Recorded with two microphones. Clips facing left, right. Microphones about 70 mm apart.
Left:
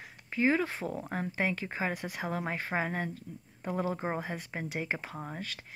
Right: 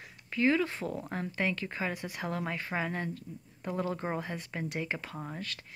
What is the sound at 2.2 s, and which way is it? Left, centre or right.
Speech, left.